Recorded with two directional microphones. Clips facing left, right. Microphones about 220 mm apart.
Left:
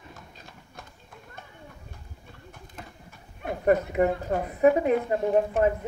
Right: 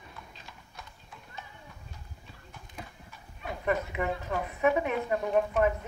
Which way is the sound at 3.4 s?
50° left (ahead or behind).